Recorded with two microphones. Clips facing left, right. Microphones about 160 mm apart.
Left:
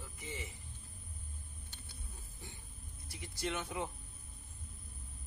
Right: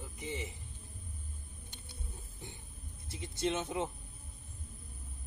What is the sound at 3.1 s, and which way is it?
Speech, 20° right (ahead or behind).